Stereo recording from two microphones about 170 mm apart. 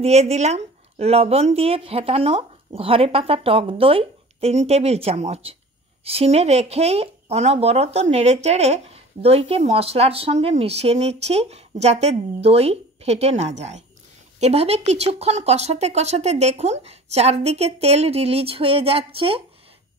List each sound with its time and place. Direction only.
0.0 s speech: 40° right (ahead or behind)